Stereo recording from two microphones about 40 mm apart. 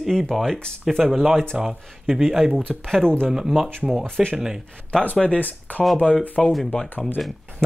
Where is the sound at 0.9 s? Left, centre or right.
Centre.